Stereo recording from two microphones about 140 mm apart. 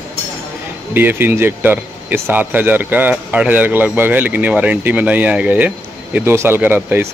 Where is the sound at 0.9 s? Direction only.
15° right (ahead or behind).